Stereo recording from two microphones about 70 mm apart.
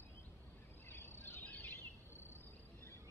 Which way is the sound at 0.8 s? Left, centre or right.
Left.